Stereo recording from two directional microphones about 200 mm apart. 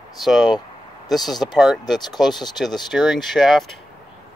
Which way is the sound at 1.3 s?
20° left (ahead or behind).